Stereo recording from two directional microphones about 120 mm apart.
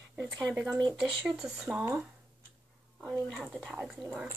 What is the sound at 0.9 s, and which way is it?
Speech, 5° right (ahead or behind).